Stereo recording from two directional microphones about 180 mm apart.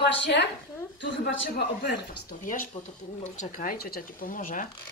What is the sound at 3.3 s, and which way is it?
Speech, 50° left (ahead or behind).